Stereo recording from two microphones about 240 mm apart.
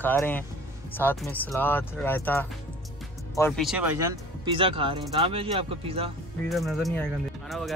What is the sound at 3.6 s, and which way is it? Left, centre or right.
A man's voice, centre.